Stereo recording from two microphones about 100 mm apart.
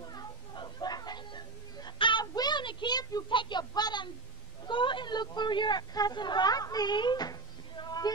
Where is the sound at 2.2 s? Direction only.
45° left (ahead or behind).